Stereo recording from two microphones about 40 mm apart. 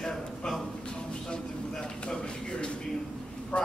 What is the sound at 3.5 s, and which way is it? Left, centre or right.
Speech, left.